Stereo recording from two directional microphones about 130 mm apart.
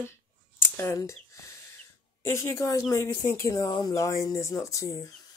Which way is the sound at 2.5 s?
25° left (ahead or behind).